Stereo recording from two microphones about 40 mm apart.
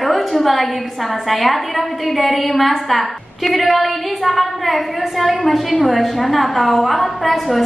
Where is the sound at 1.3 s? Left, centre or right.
Centre.